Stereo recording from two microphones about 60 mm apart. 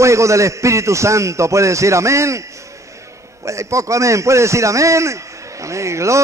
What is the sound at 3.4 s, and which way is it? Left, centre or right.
A man's voice, right.